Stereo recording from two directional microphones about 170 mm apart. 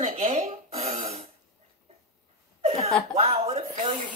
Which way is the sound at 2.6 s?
40° right (ahead or behind).